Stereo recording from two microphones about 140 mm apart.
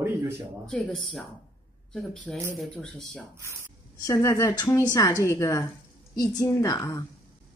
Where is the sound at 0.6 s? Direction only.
5° left (ahead or behind).